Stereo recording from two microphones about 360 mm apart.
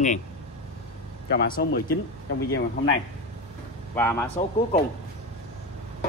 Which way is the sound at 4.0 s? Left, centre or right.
Centre.